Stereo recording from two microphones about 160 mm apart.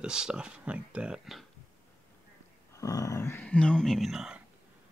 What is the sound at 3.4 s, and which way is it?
Speech, 5° left (ahead or behind).